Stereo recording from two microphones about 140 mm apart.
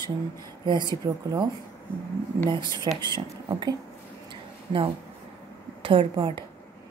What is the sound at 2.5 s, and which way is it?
Speech, 35° right (ahead or behind).